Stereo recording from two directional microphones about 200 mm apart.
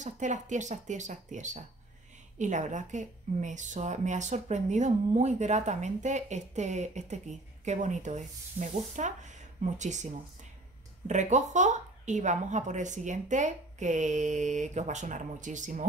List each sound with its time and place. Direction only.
0.0 s a woman's voice: 40° right (ahead or behind)
11.1 s a woman's voice: 35° right (ahead or behind)